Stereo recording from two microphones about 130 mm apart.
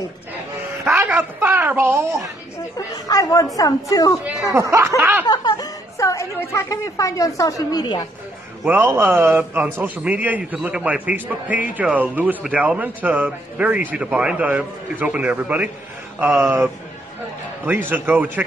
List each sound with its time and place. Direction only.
0.8 s a woman's voice: 15° right (ahead or behind)
3.1 s a woman's voice: 25° left (ahead or behind)
4.5 s speech: 25° right (ahead or behind)
5.2 s a woman's voice: 30° left (ahead or behind)
7.8 s a woman's voice: 35° left (ahead or behind)
8.6 s speech: 15° right (ahead or behind)
17.6 s speech: 15° right (ahead or behind)